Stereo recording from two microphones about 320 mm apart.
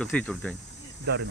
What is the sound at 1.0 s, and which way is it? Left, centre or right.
Speech, right.